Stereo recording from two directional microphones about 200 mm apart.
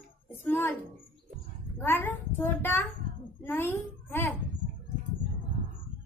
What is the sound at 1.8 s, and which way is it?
A child's voice, 10° left (ahead or behind).